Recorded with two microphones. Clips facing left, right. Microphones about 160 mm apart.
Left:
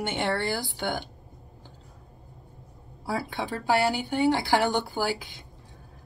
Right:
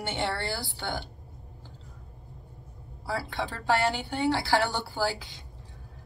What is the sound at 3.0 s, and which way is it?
A woman's voice, 15° left (ahead or behind).